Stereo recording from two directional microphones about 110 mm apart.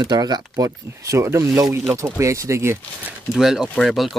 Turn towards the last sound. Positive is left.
turn(degrees=0)  # may be behind; listen again after turning